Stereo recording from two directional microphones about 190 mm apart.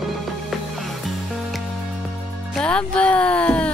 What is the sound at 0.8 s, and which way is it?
Music, centre (ahead or behind).